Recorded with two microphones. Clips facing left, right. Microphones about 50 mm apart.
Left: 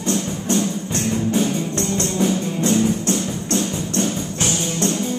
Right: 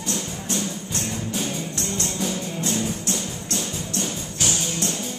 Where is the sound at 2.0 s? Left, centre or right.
Left.